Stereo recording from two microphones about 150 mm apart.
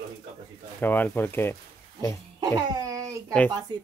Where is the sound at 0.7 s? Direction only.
10° left (ahead or behind).